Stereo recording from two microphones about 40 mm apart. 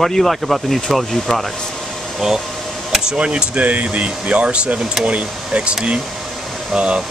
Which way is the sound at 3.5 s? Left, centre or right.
Right.